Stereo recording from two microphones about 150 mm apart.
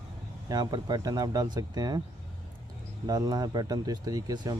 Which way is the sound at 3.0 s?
25° right (ahead or behind).